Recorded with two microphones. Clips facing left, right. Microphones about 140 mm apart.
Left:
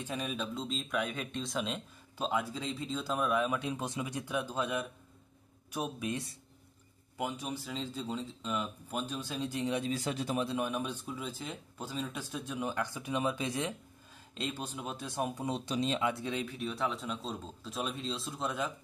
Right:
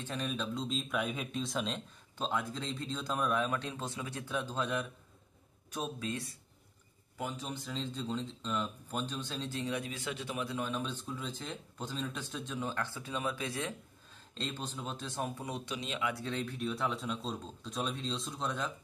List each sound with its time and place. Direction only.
0.0 s speech: 10° left (ahead or behind)
9.9 s speech: 40° left (ahead or behind)
10.4 s speech: 20° left (ahead or behind)
16.4 s speech: centre (ahead or behind)